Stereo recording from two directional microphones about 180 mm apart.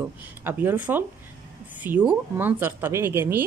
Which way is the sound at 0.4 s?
10° right (ahead or behind).